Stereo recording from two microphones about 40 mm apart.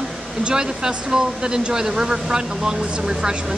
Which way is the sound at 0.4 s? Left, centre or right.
Right.